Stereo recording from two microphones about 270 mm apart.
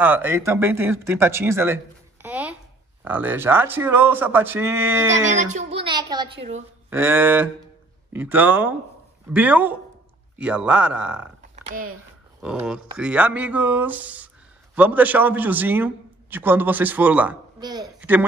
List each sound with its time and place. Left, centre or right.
0.0 s a man's voice: centre
2.2 s a sound: centre
3.0 s a man's voice: centre
5.4 s a child's voice: right; by 11.2 s centre
12.4 s a man's voice: centre